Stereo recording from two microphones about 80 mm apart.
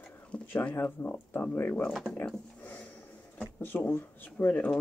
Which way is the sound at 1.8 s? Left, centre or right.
Centre.